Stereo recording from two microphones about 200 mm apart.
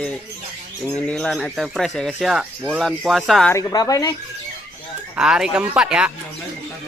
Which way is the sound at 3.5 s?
15° left (ahead or behind).